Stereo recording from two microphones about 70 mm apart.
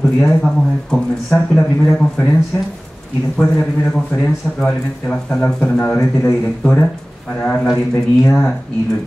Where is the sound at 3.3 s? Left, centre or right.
Centre.